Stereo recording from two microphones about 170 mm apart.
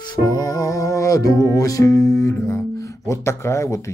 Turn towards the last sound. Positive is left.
turn(degrees=15)  # may be behind; listen again after turning